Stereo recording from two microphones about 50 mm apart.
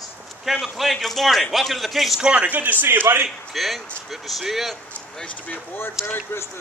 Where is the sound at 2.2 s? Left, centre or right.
Right.